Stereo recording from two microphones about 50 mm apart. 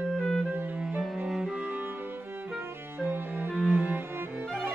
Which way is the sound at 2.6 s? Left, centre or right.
Right.